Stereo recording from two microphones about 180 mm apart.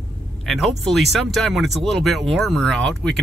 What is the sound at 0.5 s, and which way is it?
Speech, centre (ahead or behind).